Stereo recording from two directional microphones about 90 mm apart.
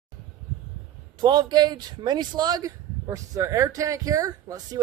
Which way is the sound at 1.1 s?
50° right (ahead or behind).